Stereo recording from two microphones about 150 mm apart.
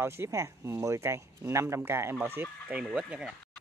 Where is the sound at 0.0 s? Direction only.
15° right (ahead or behind).